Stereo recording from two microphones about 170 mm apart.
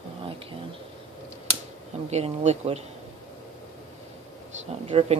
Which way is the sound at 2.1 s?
40° right (ahead or behind).